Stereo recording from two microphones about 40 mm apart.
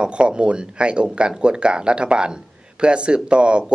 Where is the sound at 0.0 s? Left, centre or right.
Right.